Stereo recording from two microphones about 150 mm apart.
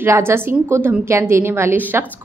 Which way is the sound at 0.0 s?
15° right (ahead or behind).